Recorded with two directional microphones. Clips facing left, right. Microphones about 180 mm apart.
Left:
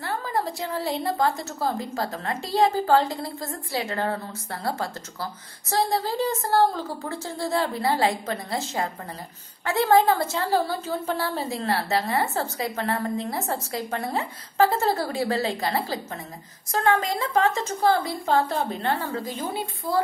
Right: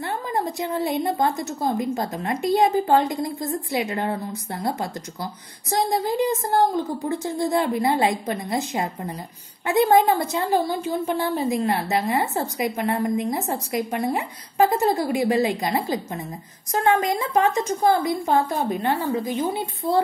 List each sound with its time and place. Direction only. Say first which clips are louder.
0.0 s a woman's voice: right 2 dB; 20° right (ahead or behind)